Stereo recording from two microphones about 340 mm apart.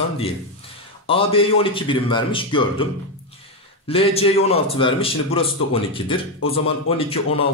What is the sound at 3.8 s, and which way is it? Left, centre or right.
A man's voice, centre.